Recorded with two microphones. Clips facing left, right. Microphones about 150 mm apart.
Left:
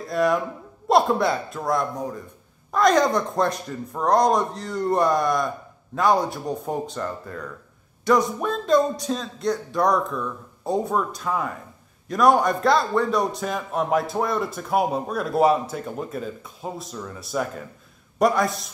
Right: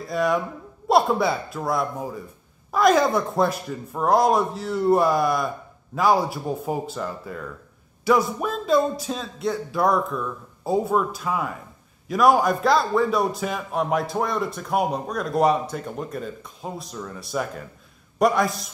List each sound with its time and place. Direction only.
0.0 s a man's voice: centre (ahead or behind)